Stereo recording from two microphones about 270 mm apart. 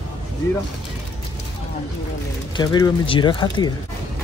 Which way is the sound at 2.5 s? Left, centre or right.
Centre.